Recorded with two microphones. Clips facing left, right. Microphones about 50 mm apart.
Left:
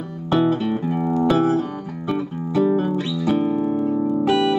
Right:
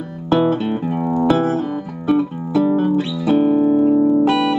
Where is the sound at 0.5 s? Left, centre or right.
Right.